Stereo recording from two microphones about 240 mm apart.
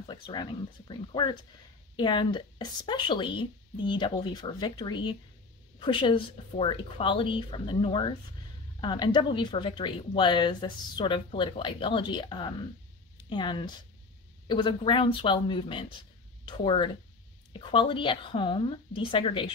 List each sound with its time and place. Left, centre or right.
0.0 s speech: centre